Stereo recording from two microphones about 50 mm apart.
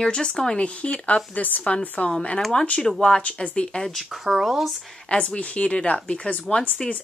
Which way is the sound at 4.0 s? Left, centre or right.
Centre.